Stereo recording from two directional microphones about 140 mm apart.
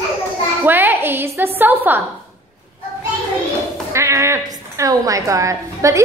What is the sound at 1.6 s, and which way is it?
Speech, 15° right (ahead or behind).